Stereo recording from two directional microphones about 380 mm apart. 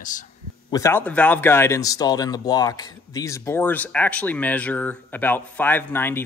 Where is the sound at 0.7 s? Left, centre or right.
Centre.